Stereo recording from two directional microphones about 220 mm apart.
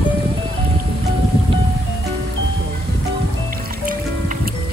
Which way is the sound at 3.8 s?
40° right (ahead or behind).